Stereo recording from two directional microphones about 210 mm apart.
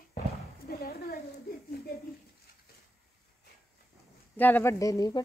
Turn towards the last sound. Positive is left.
turn(degrees=15)  # may be behind; listen again after turning